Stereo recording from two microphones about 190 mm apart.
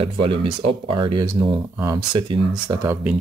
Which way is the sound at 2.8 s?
10° right (ahead or behind).